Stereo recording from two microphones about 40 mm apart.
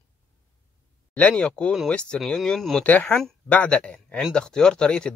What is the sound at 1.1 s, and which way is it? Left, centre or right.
Speech, left.